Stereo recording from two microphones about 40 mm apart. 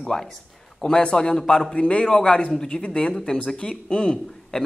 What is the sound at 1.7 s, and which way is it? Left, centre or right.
Speech, left.